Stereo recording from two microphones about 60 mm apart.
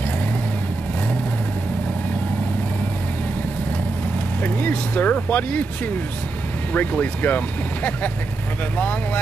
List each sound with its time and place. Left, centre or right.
4.4 s speech: left
6.7 s speech: left